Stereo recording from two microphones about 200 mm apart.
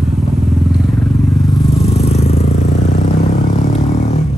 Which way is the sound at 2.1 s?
30° left (ahead or behind).